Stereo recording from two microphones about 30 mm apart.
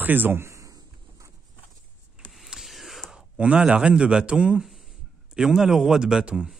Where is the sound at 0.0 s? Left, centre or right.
Right.